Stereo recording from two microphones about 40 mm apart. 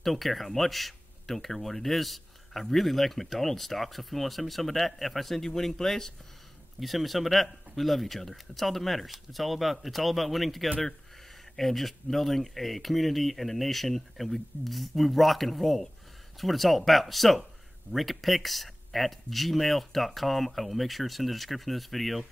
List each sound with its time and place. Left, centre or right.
0.0 s speech: centre
6.8 s speech: centre